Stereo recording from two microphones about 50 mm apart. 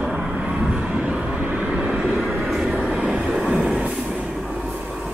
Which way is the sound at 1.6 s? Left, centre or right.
Centre.